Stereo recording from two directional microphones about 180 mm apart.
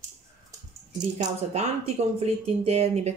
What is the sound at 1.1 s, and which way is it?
Speech, 40° right (ahead or behind).